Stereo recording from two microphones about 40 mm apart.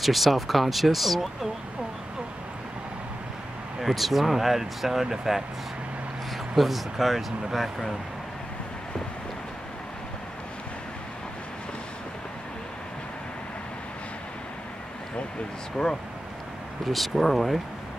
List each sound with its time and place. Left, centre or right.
0.0 s speech: centre
3.8 s speech: centre
6.5 s speech: centre
15.8 s speech: left
16.8 s speech: centre